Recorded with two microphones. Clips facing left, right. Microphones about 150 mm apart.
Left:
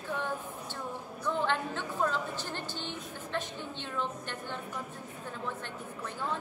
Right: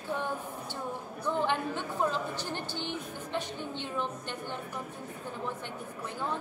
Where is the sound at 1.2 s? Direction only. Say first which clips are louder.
Right 1 dB; 15° right (ahead or behind).